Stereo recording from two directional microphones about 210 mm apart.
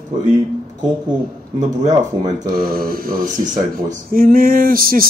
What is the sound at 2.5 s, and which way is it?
Speech, 45° right (ahead or behind).